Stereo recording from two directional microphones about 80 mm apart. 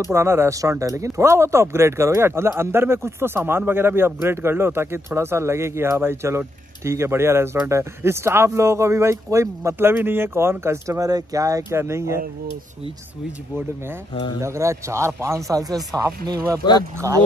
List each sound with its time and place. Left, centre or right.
0.1 s speech: right
11.0 s speech: right
14.4 s speech: right